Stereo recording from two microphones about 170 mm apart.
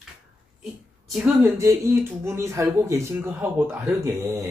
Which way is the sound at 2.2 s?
15° right (ahead or behind).